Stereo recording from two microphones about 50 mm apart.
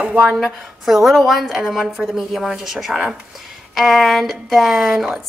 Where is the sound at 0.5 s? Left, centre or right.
Centre.